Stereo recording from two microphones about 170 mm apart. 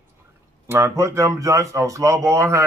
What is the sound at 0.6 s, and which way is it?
Speech, 15° right (ahead or behind).